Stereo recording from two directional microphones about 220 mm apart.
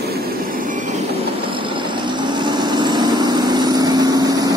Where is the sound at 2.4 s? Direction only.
20° right (ahead or behind).